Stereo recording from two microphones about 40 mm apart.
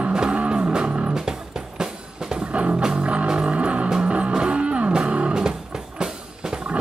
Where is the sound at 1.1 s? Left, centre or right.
Centre.